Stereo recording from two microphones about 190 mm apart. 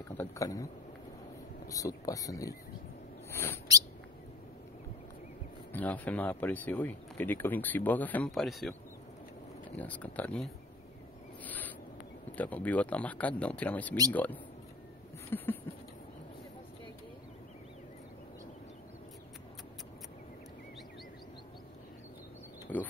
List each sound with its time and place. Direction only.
0.2 s speech: 15° left (ahead or behind)
1.7 s speech: 20° left (ahead or behind)
3.3 s owl: 15° left (ahead or behind)
5.7 s speech: 10° left (ahead or behind)
9.8 s speech: 10° left (ahead or behind)
11.4 s a sound: 10° left (ahead or behind)
12.4 s speech: 10° left (ahead or behind)
15.2 s a sound: 10° left (ahead or behind)
22.7 s a sound: 10° left (ahead or behind)